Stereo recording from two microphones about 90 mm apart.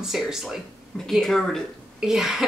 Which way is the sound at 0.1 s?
5° right (ahead or behind).